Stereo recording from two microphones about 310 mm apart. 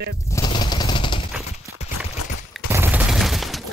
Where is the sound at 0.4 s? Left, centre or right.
Centre.